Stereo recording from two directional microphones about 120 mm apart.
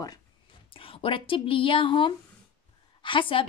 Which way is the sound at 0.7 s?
50° left (ahead or behind).